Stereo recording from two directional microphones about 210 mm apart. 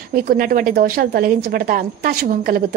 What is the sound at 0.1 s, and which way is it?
A woman's voice, 45° right (ahead or behind).